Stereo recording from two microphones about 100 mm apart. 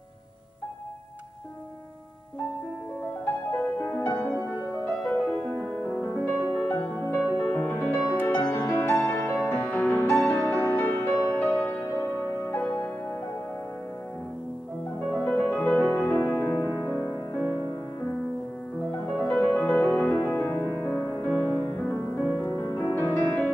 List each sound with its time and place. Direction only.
3.5 s music: 15° left (ahead or behind)
5.1 s music: 15° left (ahead or behind)
15.2 s music: 15° left (ahead or behind)
19.1 s music: 10° left (ahead or behind)
22.5 s music: 25° left (ahead or behind)